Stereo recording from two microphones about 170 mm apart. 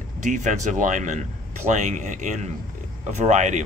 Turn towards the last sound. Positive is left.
turn(degrees=-45)  # may be behind; listen again after turning